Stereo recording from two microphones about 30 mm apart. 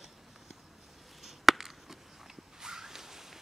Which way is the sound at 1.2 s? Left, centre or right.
Centre.